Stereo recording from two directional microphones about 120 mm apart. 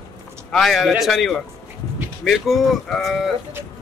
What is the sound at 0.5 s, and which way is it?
Speech, centre (ahead or behind).